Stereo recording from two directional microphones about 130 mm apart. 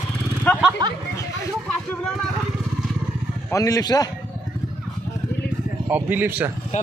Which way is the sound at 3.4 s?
25° left (ahead or behind).